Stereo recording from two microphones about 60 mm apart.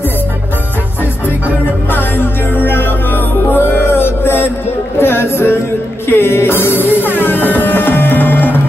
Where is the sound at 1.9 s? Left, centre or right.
Left.